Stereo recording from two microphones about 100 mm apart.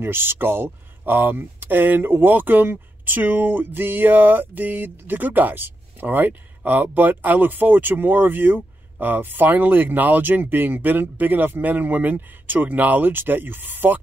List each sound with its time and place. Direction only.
0.0 s speech: 20° right (ahead or behind)